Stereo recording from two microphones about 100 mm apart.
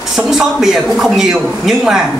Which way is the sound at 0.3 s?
5° right (ahead or behind).